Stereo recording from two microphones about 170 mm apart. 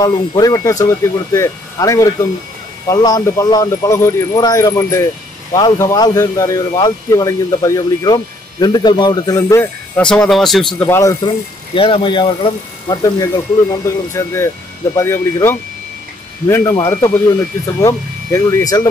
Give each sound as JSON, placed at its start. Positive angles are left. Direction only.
{"t": 0.0, "sound": "speech", "side_deg": 25}
{"t": 10.9, "sound": "speech", "side_deg": 20}
{"t": 11.7, "sound": "speech", "side_deg": 30}